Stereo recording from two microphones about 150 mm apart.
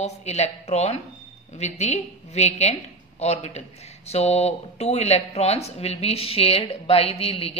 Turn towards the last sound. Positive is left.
turn(degrees=40)  # may be behind; listen again after turning